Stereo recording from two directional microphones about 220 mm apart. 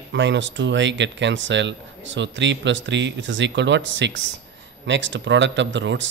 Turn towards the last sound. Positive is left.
turn(degrees=-55)  # may be behind; listen again after turning